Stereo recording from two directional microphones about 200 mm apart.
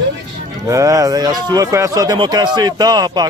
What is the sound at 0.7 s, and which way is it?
A man's voice, 15° right (ahead or behind).